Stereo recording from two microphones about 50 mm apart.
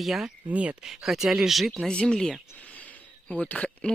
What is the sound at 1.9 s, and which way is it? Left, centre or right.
Speech, centre.